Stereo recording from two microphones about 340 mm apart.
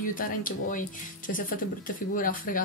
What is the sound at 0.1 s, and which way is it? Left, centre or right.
Speech, left.